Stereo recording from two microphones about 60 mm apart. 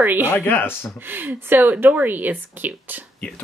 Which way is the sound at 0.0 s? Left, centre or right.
Right.